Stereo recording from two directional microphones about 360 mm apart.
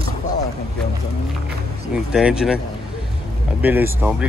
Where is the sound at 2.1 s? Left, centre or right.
Centre.